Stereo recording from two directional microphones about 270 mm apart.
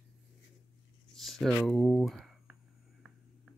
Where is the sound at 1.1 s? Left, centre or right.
Centre.